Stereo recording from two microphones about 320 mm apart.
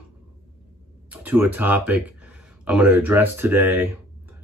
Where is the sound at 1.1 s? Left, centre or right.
Centre.